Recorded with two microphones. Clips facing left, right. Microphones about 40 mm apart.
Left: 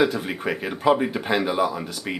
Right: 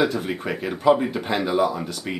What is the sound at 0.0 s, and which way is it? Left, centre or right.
Speech, centre.